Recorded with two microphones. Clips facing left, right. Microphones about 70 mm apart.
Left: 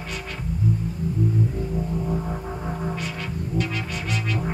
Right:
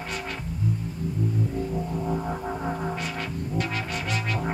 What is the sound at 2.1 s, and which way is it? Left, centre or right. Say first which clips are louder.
Music: even; centre.